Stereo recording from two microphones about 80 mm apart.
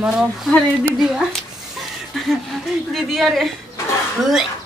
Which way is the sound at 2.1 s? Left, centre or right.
Centre.